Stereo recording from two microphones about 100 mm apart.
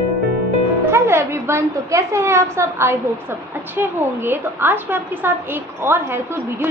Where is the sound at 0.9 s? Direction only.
25° right (ahead or behind).